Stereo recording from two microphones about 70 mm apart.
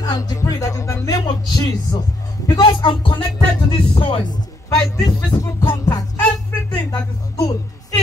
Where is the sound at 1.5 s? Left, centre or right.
Left.